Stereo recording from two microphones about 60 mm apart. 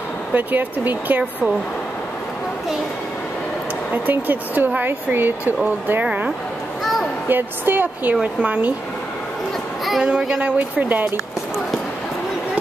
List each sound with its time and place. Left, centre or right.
0.3 s speech: right
3.9 s speech: right
6.8 s a sound: centre
7.2 s speech: right
10.0 s speech: centre
10.8 s speech: right